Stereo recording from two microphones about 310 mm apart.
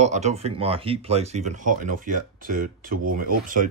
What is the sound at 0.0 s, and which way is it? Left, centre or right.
Speech, right.